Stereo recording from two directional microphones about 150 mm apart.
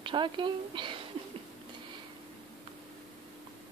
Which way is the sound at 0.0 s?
35° right (ahead or behind).